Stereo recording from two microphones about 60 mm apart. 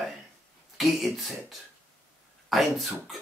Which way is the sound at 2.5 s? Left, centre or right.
Centre.